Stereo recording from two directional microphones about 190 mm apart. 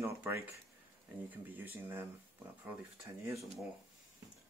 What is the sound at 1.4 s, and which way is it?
Speech, 10° right (ahead or behind).